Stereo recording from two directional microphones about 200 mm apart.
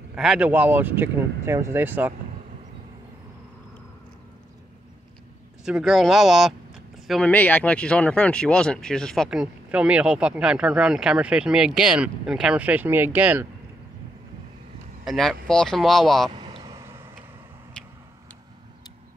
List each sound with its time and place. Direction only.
0.1 s speech: 5° right (ahead or behind)
5.7 s speech: centre (ahead or behind)
15.0 s speech: centre (ahead or behind)
16.3 s vehicle: 25° right (ahead or behind)